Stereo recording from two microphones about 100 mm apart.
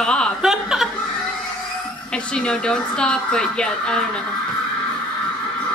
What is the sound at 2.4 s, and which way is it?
Speech, 10° left (ahead or behind).